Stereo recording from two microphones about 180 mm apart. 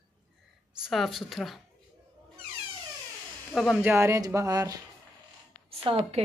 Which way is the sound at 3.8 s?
15° right (ahead or behind).